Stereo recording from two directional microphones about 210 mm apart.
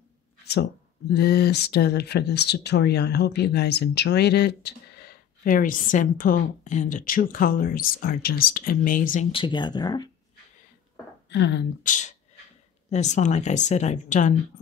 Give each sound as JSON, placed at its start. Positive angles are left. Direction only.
{"t": 1.1, "sound": "speech", "side_deg": 50}
{"t": 9.3, "sound": "speech", "side_deg": 20}
{"t": 11.2, "sound": "speech", "side_deg": 55}
{"t": 11.8, "sound": "a woman's voice", "side_deg": 35}